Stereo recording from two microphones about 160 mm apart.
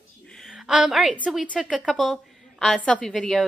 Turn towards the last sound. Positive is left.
turn(degrees=5)  # may be behind; listen again after turning